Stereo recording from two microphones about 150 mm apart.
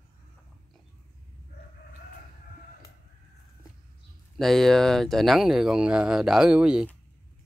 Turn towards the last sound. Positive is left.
turn(degrees=-5)  # may be behind; listen again after turning